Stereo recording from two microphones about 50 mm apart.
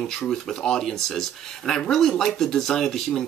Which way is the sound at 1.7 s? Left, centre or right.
Centre.